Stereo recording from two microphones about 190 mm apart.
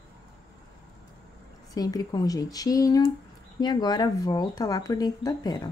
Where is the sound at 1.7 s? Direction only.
20° left (ahead or behind).